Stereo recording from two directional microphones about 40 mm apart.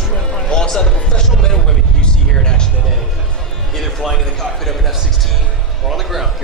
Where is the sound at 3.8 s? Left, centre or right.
Centre.